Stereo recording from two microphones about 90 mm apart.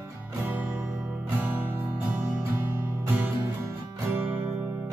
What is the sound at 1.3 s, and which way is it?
Music, 20° right (ahead or behind).